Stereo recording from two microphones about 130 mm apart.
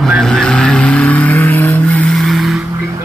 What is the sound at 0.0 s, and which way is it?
Vehicle, centre (ahead or behind).